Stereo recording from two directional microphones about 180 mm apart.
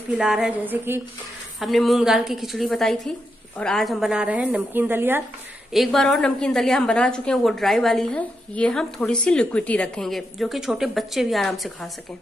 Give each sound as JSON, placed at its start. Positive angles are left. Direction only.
{"t": 0.1, "sound": "a woman's voice", "side_deg": -5}
{"t": 1.6, "sound": "a woman's voice", "side_deg": 0}
{"t": 5.7, "sound": "a woman's voice", "side_deg": 0}